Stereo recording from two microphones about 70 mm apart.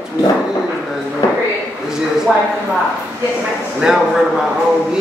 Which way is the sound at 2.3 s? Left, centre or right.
Centre.